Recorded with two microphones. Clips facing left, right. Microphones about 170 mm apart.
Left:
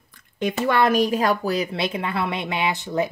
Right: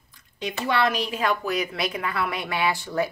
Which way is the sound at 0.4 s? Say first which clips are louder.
Left 4 dB; 50° left (ahead or behind).